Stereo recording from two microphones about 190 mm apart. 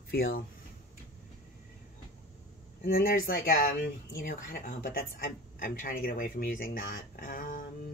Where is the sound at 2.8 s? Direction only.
50° left (ahead or behind).